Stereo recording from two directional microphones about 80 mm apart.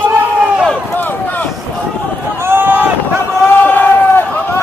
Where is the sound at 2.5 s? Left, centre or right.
Right.